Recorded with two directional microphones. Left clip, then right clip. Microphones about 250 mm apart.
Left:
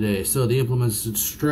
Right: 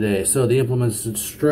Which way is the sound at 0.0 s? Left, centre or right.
Centre.